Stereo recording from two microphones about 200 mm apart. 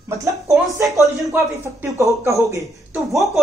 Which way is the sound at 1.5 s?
15° right (ahead or behind).